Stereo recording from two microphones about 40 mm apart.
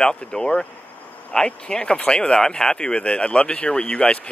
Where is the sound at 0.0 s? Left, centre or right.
Centre.